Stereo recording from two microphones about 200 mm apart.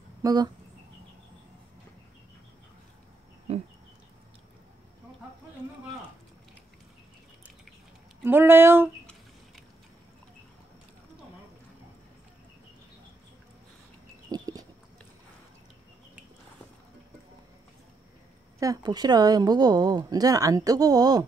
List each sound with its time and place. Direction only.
0.2 s speech: 20° right (ahead or behind)
3.5 s a sound: 30° right (ahead or behind)
8.2 s speech: 10° right (ahead or behind)
14.3 s dog: 20° right (ahead or behind)
18.6 s speech: 20° right (ahead or behind)